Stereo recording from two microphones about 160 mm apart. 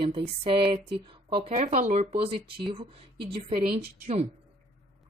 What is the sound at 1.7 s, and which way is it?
Speech, 60° right (ahead or behind).